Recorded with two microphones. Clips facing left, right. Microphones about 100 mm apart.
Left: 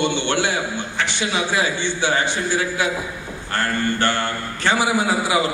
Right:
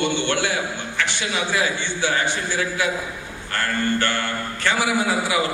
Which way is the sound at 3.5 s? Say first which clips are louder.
Left 1 dB; 20° left (ahead or behind).